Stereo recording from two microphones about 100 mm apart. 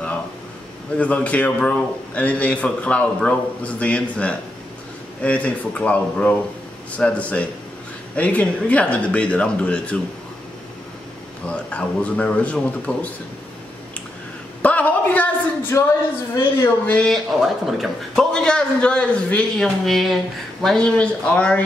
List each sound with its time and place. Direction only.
0.9 s a man's voice: 15° left (ahead or behind)
11.4 s a man's voice: 10° left (ahead or behind)
14.6 s a sound: 15° left (ahead or behind)
15.7 s a man's voice: 25° left (ahead or behind)
17.0 s a man's voice: centre (ahead or behind)